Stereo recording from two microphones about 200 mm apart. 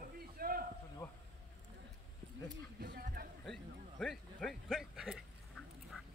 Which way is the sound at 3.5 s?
Centre (ahead or behind).